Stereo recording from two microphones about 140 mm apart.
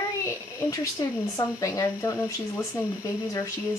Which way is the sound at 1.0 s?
30° left (ahead or behind).